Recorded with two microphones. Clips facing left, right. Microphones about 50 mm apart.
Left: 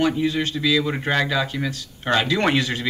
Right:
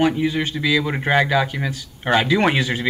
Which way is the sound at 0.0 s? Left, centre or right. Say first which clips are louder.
Right 2 dB; centre.